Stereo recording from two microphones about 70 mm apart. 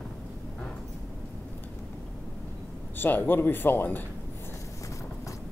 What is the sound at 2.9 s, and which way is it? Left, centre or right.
A man's voice, left.